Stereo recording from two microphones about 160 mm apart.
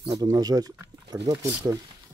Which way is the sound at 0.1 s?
25° right (ahead or behind).